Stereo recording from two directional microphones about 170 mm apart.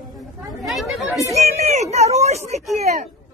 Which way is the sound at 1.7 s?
45° right (ahead or behind).